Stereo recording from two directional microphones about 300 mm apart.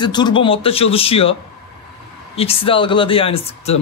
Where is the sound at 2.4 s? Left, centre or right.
Centre.